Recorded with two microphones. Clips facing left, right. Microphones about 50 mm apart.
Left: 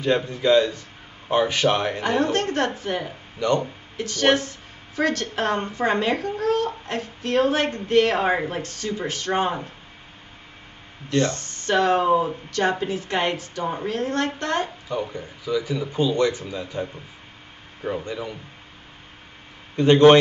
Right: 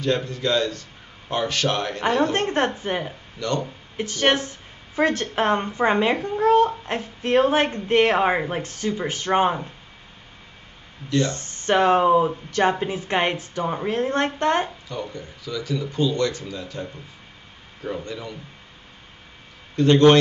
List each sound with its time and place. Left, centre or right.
0.0 s speech: centre
2.3 s speech: right
3.3 s speech: centre
3.9 s speech: right
11.3 s speech: right
14.9 s speech: centre
17.8 s speech: centre
19.7 s a man's voice: centre